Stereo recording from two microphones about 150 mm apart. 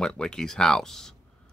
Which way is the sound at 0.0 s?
5° left (ahead or behind).